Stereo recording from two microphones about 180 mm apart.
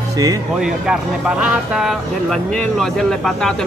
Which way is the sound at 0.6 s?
5° right (ahead or behind).